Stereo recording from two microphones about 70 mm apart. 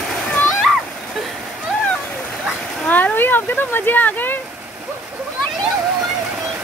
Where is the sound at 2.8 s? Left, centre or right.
Left.